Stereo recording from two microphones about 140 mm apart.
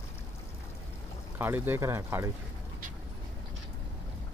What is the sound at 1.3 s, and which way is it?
Speech, 15° right (ahead or behind).